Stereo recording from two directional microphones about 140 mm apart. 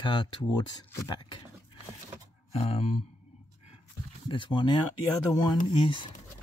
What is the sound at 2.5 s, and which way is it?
Music, 45° left (ahead or behind).